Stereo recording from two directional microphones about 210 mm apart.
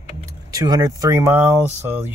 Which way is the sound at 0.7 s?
15° right (ahead or behind).